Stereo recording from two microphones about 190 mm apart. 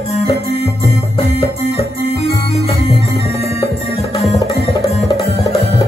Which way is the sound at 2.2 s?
30° left (ahead or behind).